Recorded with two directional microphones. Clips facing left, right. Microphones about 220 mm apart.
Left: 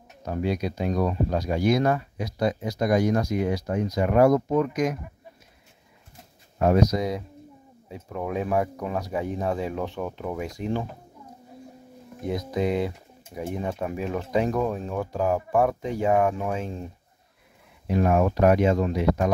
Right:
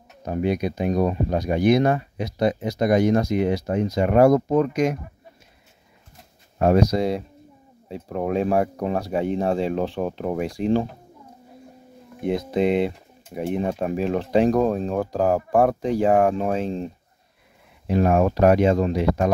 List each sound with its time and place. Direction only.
0.2 s speech: 20° right (ahead or behind)
6.6 s speech: 30° right (ahead or behind)
12.2 s speech: 25° right (ahead or behind)